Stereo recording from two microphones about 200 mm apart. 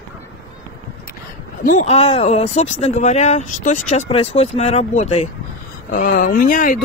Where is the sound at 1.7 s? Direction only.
35° left (ahead or behind).